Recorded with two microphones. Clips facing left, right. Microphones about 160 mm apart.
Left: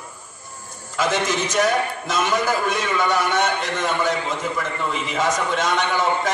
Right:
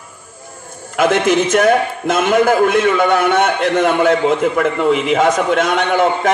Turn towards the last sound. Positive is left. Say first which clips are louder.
# right 7 dB
turn(degrees=-60)  # may be behind; listen again after turning